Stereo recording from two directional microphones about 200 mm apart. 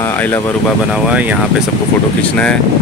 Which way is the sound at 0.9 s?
5° right (ahead or behind).